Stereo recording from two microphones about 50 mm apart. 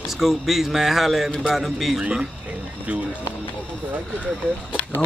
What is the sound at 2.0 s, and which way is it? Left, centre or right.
Speech, centre.